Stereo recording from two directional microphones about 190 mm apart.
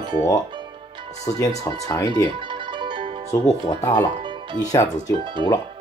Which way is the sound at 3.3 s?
15° left (ahead or behind).